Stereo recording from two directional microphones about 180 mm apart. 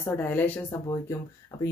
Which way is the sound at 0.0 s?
10° left (ahead or behind).